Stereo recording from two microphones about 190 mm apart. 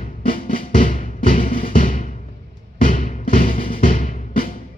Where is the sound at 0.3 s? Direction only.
45° left (ahead or behind).